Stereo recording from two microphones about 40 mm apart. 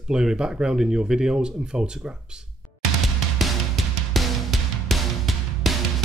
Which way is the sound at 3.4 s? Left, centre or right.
Centre.